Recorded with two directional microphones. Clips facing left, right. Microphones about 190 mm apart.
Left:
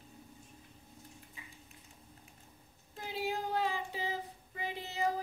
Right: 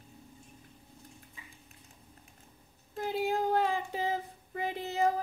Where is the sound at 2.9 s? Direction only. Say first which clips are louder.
Right 6 dB; 50° right (ahead or behind).